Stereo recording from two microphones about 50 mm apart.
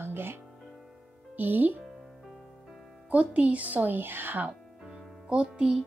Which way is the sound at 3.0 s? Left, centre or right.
Right.